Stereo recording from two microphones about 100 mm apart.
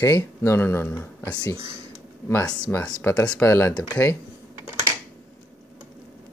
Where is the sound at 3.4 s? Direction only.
25° left (ahead or behind).